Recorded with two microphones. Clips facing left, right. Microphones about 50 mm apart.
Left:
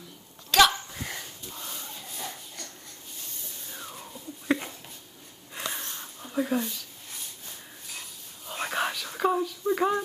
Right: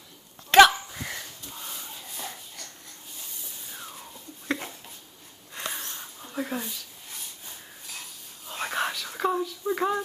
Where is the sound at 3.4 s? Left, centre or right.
Centre.